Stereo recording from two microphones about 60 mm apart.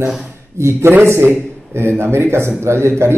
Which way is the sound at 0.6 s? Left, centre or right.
Right.